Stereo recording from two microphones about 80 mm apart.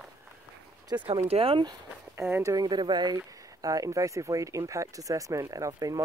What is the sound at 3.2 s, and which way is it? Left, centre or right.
Speech, right.